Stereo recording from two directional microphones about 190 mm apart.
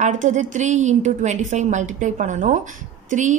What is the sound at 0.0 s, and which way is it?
A woman's voice, 40° right (ahead or behind).